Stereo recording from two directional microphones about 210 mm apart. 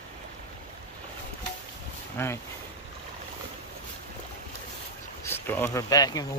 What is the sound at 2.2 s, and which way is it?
Speech, 10° left (ahead or behind).